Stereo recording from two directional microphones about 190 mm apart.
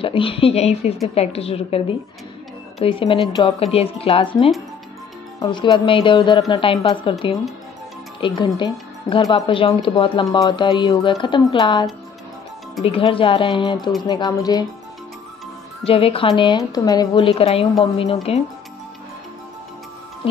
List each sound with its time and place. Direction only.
0.0 s a woman's voice: 30° left (ahead or behind)
8.2 s speech: 25° left (ahead or behind)
12.8 s speech: 30° left (ahead or behind)
15.8 s a woman's voice: 30° left (ahead or behind)